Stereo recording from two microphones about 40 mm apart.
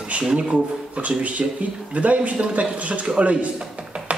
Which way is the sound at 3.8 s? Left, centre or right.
Right.